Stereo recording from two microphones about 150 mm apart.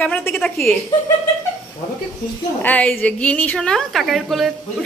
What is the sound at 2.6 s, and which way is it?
A woman's voice, 10° left (ahead or behind).